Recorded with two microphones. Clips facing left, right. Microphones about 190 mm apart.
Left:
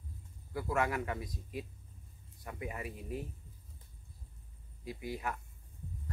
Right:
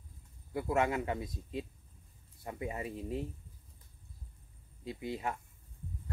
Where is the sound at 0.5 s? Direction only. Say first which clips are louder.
Right 2 dB; 25° right (ahead or behind).